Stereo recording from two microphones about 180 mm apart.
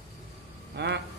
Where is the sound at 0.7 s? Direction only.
70° right (ahead or behind).